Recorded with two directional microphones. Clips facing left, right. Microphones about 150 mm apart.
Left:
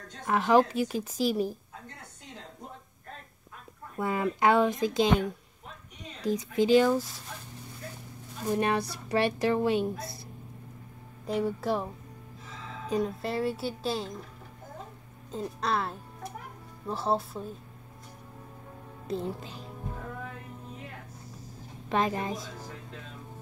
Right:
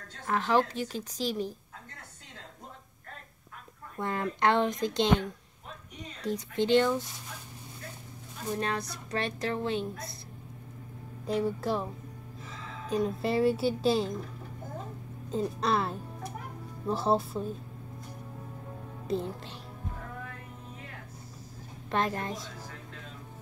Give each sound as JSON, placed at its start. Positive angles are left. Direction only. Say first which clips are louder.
{"t": 0.3, "sound": "speech", "louder": "left 4 dB", "side_deg": 10}
{"t": 4.0, "sound": "speech", "louder": "left 2 dB", "side_deg": 5}
{"t": 8.5, "sound": "speech", "louder": "left 5 dB", "side_deg": 15}
{"t": 11.2, "sound": "speech", "louder": "even", "side_deg": 10}
{"t": 12.9, "sound": "speech", "louder": "right 2 dB", "side_deg": 0}
{"t": 15.3, "sound": "speech", "louder": "right 2 dB", "side_deg": 0}
{"t": 19.0, "sound": "speech", "louder": "right 1 dB", "side_deg": 0}
{"t": 21.9, "sound": "speech", "louder": "left 2 dB", "side_deg": 5}